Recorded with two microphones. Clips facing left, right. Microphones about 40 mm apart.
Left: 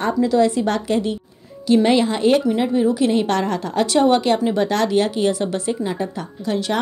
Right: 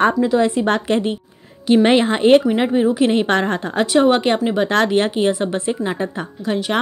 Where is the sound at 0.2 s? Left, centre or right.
Right.